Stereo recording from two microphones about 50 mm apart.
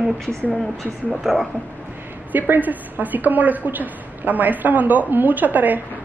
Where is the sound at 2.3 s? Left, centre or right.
Right.